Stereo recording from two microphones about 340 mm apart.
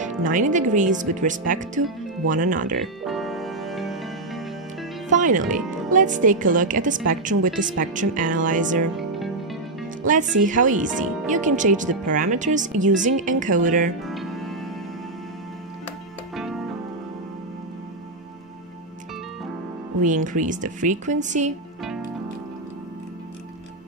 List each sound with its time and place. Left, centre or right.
0.0 s a woman's voice: right
3.0 s music: centre
5.1 s a woman's voice: right
8.9 s music: centre
10.0 s a woman's voice: right
14.0 s music: centre
16.3 s music: centre
20.0 s a woman's voice: right